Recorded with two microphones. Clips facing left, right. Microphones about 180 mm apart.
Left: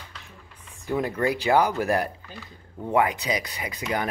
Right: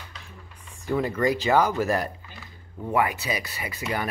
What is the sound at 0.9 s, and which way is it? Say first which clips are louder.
Speech: right 1 dB; 10° left (ahead or behind).